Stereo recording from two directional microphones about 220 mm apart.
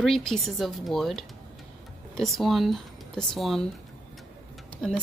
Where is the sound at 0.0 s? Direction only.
Centre (ahead or behind).